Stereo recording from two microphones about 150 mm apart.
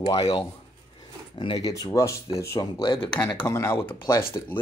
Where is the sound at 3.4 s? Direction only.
15° left (ahead or behind).